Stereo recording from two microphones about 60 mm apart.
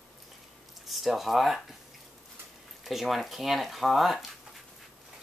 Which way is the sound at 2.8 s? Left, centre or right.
Centre.